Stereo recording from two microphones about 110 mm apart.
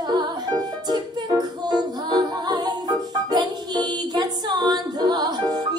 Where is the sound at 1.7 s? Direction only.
40° right (ahead or behind).